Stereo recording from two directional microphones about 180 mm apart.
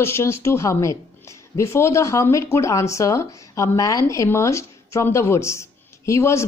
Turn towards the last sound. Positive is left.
turn(degrees=15)  # may be behind; listen again after turning